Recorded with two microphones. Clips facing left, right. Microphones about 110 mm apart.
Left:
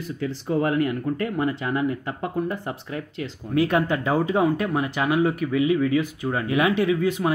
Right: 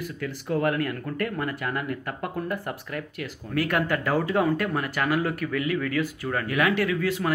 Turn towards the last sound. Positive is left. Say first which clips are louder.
# left 4 dB
turn(degrees=20)  # may be behind; listen again after turning